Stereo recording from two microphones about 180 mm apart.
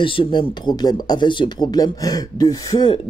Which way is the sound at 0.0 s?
30° left (ahead or behind).